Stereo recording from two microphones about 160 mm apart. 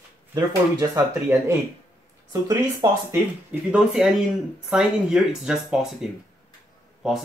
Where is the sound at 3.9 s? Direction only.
5° right (ahead or behind).